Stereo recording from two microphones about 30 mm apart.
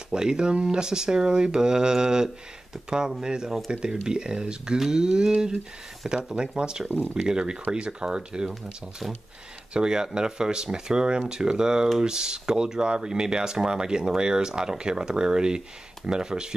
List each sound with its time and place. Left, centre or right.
0.1 s speech: right
3.7 s speech: right
9.8 s speech: right